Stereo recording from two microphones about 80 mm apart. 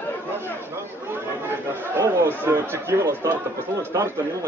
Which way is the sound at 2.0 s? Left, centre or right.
Right.